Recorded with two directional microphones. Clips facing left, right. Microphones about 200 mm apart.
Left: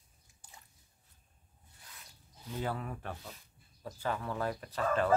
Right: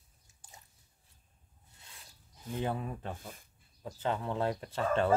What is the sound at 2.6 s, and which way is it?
Chicken, 20° right (ahead or behind).